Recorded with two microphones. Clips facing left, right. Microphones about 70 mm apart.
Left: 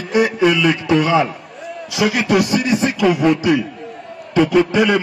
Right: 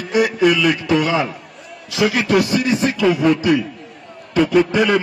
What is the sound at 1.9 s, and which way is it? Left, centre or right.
A man's voice, centre.